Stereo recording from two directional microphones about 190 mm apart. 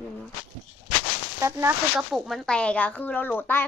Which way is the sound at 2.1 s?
Centre (ahead or behind).